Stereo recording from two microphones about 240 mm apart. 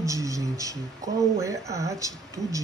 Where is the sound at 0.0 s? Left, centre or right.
Centre.